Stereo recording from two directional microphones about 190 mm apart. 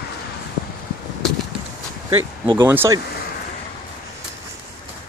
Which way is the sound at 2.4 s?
25° right (ahead or behind).